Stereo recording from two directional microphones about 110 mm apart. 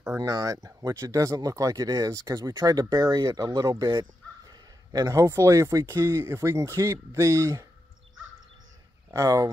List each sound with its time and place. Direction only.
0.0 s speech: 30° right (ahead or behind)
9.1 s speech: 30° right (ahead or behind)